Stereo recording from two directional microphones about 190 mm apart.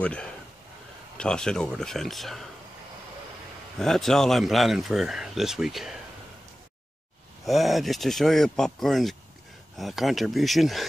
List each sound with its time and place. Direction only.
0.0 s speech: 5° left (ahead or behind)
3.8 s speech: centre (ahead or behind)
7.4 s speech: centre (ahead or behind)